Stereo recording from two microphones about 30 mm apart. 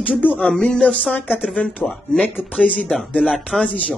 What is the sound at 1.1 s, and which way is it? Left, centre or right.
Speech, left.